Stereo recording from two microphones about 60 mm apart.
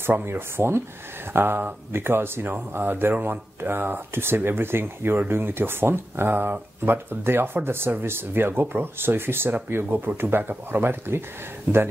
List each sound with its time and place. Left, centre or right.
0.0 s speech: right